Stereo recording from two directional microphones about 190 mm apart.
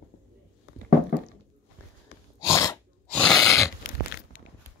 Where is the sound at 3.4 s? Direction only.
15° left (ahead or behind).